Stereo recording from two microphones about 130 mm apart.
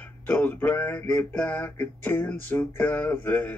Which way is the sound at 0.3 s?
15° left (ahead or behind).